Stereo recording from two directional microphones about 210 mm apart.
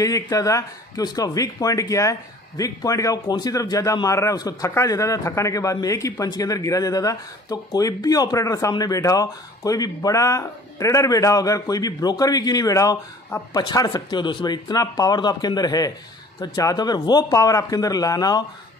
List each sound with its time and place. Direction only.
0.0 s speech: 15° left (ahead or behind)